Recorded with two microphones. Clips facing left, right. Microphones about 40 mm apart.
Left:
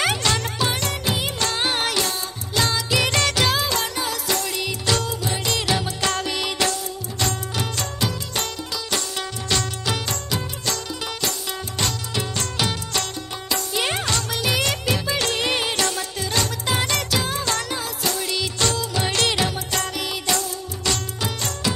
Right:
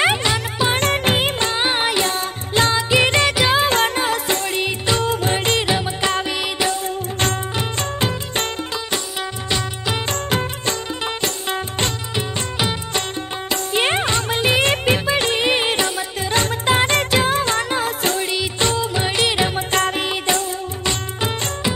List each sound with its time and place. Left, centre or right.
0.0 s music: right
0.7 s music of bollywood: right
1.4 s music: right
2.0 s music: right
3.6 s music: right
5.1 s music: right
5.7 s music: right
7.5 s music: right
9.5 s music: centre
10.0 s music: right
12.2 s music of bollywood: right
13.5 s music: right
18.3 s music of bollywood: right
19.5 s music: right